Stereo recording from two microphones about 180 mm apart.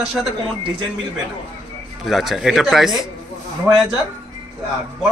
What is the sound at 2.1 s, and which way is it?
Speech, centre (ahead or behind).